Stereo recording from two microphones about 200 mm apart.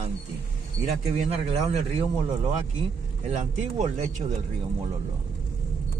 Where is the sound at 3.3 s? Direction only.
35° right (ahead or behind).